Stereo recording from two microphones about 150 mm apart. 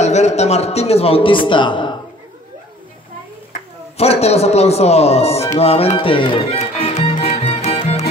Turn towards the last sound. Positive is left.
turn(degrees=40)  # may be behind; listen again after turning